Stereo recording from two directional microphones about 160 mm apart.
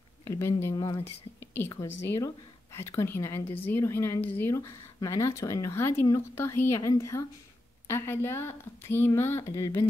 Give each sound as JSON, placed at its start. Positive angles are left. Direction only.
{"t": 0.2, "sound": "speech", "side_deg": 20}
{"t": 2.0, "sound": "speech", "side_deg": 15}